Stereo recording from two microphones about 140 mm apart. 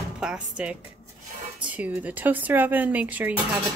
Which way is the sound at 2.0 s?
10° right (ahead or behind).